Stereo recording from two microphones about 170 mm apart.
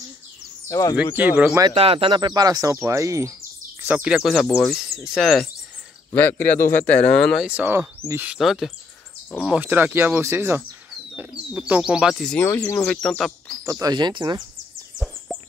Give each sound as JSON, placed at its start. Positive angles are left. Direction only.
{"t": 0.7, "sound": "speech", "side_deg": 20}
{"t": 1.1, "sound": "speech", "side_deg": -10}
{"t": 1.7, "sound": "speech", "side_deg": -35}
{"t": 3.8, "sound": "speech", "side_deg": -5}
{"t": 6.7, "sound": "speech", "side_deg": 45}
{"t": 7.1, "sound": "speech", "side_deg": 5}
{"t": 12.4, "sound": "speech", "side_deg": 15}
{"t": 12.8, "sound": "speech", "side_deg": 5}
{"t": 13.7, "sound": "speech", "side_deg": -20}
{"t": 15.3, "sound": "a sound", "side_deg": 0}